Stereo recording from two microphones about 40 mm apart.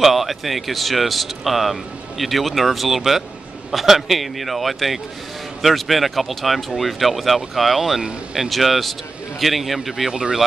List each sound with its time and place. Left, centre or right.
0.0 s speech: centre
10.1 s speech: centre